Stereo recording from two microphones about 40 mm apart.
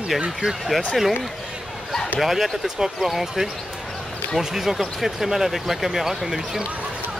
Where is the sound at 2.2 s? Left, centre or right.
Centre.